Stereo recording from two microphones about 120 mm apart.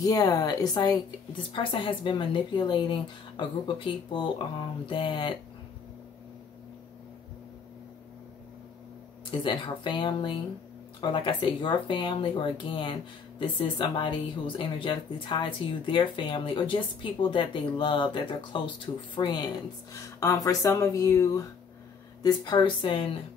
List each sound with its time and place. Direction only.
0.0 s a woman's voice: 30° left (ahead or behind)
1.5 s speech: 45° left (ahead or behind)
9.4 s a woman's voice: 45° left (ahead or behind)